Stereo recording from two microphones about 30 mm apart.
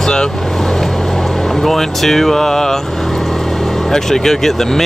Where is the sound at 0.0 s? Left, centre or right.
Centre.